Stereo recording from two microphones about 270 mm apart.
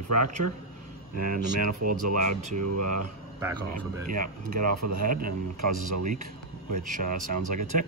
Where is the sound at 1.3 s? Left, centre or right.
Right.